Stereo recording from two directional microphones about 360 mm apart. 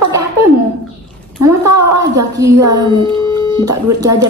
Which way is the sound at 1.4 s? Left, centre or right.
Centre.